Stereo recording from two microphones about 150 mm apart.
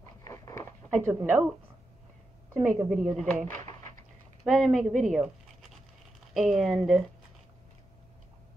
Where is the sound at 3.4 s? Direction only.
60° right (ahead or behind).